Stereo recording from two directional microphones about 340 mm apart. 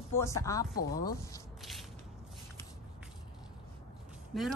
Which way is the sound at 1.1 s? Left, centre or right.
Centre.